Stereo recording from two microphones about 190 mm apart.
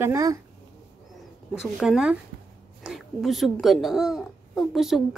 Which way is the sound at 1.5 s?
5° right (ahead or behind).